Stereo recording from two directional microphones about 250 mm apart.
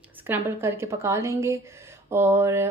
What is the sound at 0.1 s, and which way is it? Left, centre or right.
A woman's voice, centre.